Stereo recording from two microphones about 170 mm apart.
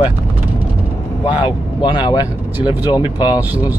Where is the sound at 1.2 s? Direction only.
30° left (ahead or behind).